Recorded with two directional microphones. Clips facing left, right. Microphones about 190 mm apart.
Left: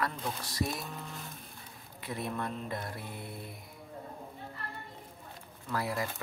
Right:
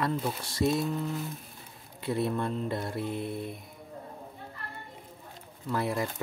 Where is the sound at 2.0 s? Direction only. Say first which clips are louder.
Right 7 dB; 30° right (ahead or behind).